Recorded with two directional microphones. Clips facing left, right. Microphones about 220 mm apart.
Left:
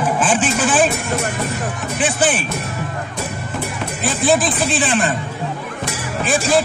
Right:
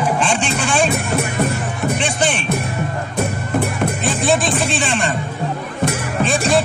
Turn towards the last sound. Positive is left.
turn(degrees=0)  # may be behind; listen again after turning